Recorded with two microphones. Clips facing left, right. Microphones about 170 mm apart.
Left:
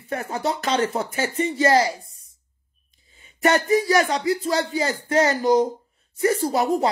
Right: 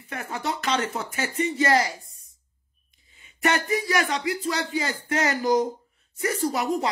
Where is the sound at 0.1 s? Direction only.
35° left (ahead or behind).